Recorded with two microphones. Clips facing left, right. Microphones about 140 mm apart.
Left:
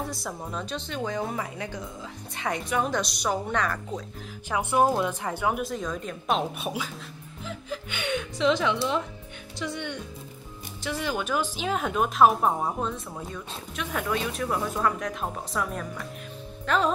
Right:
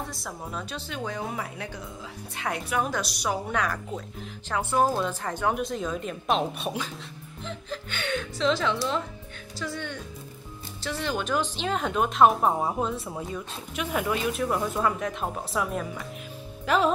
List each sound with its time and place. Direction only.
0.1 s speech: centre (ahead or behind)
4.5 s speech: 15° left (ahead or behind); by 16.9 s 5° right (ahead or behind)